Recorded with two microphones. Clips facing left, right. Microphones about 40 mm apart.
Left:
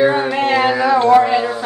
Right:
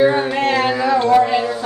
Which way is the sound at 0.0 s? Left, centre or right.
Left.